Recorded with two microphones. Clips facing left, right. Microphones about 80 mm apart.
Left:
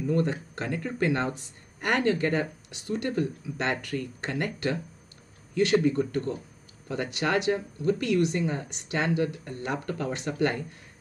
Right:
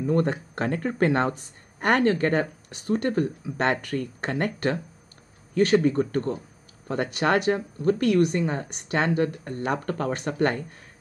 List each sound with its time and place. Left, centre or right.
0.0 s speech: right